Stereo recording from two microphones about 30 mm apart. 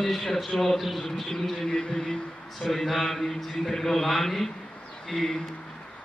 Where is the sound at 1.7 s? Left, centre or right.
Left.